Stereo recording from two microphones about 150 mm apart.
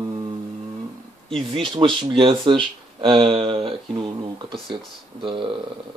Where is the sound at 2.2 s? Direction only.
35° right (ahead or behind).